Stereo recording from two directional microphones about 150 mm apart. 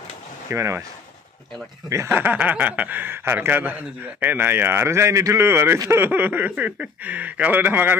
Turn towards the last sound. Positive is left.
turn(degrees=-15)  # may be behind; listen again after turning